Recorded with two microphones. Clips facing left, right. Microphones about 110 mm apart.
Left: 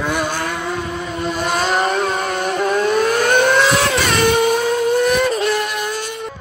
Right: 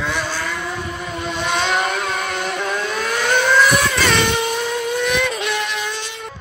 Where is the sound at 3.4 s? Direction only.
55° left (ahead or behind).